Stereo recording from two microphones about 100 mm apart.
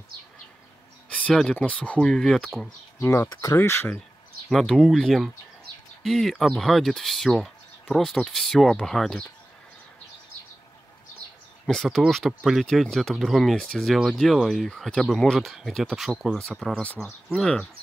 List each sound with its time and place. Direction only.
1.0 s speech: 10° left (ahead or behind)
3.0 s speech: 25° left (ahead or behind)
4.5 s speech: 5° left (ahead or behind)
11.6 s speech: 5° left (ahead or behind)